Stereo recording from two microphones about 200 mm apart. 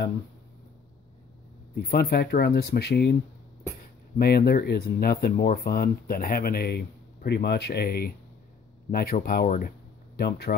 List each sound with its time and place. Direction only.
1.8 s speech: 50° left (ahead or behind)
4.2 s speech: 50° left (ahead or behind)